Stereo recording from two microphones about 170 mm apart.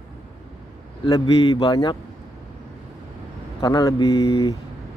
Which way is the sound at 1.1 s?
30° left (ahead or behind).